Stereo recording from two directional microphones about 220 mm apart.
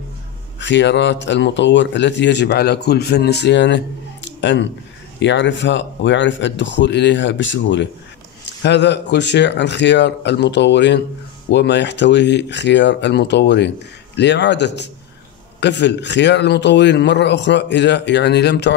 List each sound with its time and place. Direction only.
0.6 s speech: 55° left (ahead or behind)